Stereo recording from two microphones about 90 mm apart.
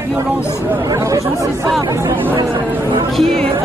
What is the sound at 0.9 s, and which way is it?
Chatter, 40° right (ahead or behind).